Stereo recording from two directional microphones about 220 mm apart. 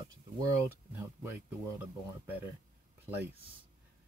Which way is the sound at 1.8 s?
10° right (ahead or behind).